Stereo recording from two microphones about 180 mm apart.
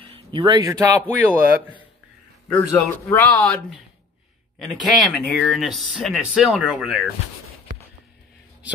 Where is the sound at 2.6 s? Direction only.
10° left (ahead or behind).